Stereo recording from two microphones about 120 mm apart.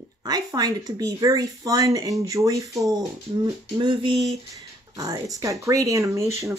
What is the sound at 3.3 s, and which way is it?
Speech, 40° right (ahead or behind).